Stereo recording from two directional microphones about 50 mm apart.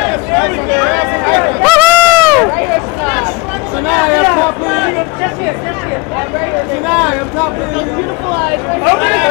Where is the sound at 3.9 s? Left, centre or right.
Centre.